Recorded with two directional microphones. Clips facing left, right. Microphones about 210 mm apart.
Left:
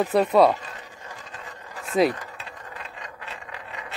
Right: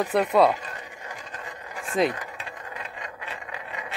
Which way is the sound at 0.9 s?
20° right (ahead or behind).